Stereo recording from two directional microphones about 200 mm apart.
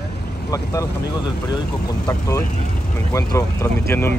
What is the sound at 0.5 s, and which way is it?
Speech, 15° left (ahead or behind).